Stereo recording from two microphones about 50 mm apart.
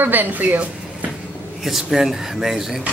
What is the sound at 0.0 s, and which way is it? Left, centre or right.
Speech, right.